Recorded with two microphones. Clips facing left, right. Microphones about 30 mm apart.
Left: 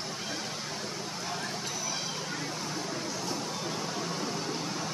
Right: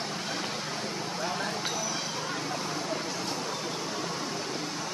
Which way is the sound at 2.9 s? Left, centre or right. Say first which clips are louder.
Right 2 dB; right.